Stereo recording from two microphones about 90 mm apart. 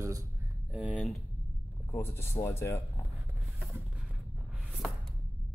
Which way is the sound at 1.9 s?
25° left (ahead or behind).